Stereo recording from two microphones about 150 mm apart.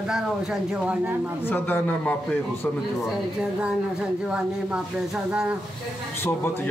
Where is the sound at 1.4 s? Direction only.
15° left (ahead or behind).